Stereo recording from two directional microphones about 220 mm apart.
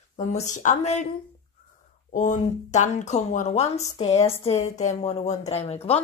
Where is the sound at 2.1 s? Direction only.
35° left (ahead or behind).